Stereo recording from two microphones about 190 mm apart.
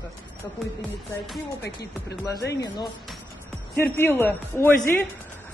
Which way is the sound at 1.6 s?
60° left (ahead or behind).